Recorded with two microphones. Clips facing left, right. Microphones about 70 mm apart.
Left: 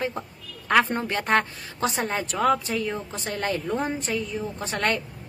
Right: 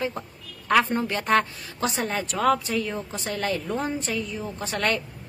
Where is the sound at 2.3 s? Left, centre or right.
Centre.